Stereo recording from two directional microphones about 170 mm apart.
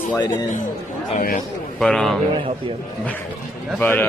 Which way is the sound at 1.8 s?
Centre (ahead or behind).